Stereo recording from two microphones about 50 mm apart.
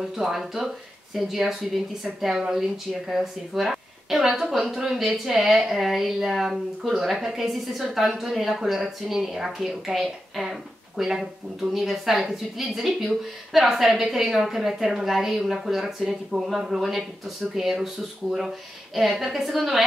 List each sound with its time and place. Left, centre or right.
0.1 s a woman's voice: centre